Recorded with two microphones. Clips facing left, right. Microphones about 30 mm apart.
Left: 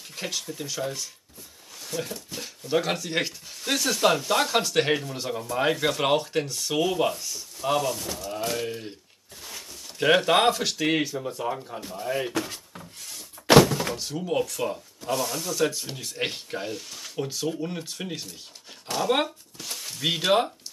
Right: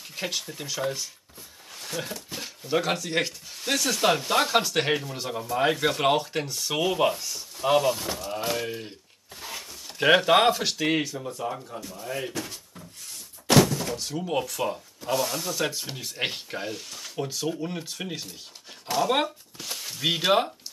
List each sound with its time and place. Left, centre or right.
0.1 s a sound: centre
0.4 s speech: centre
1.9 s speech: right
2.3 s speech: centre
4.1 s speech: centre
6.8 s speech: centre
8.3 s speech: centre
9.4 s a sound: right
9.9 s speech: centre
11.8 s speech: left
12.1 s speech: centre
13.5 s thunk: left
13.9 s speech: centre
18.9 s a sound: centre